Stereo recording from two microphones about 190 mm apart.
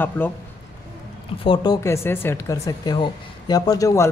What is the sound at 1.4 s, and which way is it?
Speech, 25° left (ahead or behind).